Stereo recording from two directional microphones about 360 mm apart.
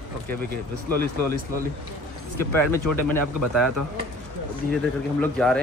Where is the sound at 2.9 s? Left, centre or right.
Right.